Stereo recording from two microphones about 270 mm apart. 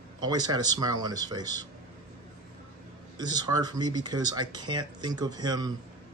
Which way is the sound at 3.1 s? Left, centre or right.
Centre.